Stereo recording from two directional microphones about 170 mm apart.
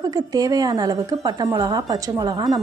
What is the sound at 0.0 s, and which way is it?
A woman's voice, 20° right (ahead or behind).